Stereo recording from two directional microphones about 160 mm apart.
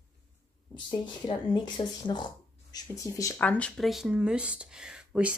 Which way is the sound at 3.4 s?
10° left (ahead or behind).